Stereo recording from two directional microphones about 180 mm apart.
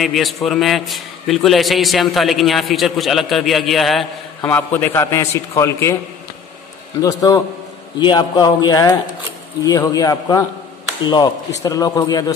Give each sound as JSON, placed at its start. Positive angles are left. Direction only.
{"t": 0.0, "sound": "a man's voice", "side_deg": 0}
{"t": 4.5, "sound": "a man's voice", "side_deg": 10}
{"t": 7.0, "sound": "speech", "side_deg": 20}
{"t": 11.6, "sound": "speech", "side_deg": 20}